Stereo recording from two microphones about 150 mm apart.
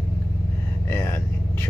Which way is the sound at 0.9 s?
15° left (ahead or behind).